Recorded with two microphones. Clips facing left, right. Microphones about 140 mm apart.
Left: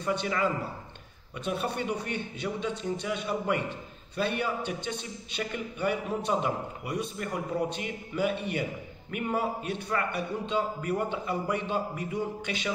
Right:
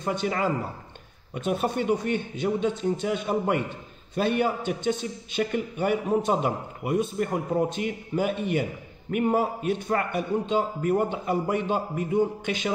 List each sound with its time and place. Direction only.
0.0 s a man's voice: 45° right (ahead or behind)